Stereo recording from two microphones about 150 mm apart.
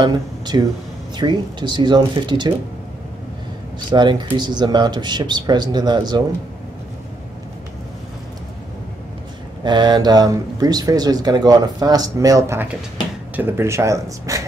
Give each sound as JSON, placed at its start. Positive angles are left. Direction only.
{"t": 0.0, "sound": "speech", "side_deg": -30}
{"t": 3.9, "sound": "speech", "side_deg": -30}
{"t": 9.6, "sound": "speech", "side_deg": -30}